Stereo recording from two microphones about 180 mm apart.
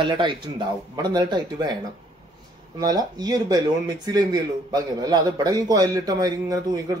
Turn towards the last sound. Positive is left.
turn(degrees=-20)  # may be behind; listen again after turning